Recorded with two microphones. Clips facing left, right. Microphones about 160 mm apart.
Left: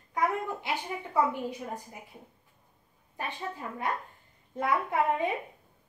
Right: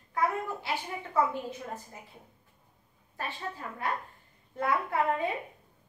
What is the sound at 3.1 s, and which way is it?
A woman's voice, 20° left (ahead or behind).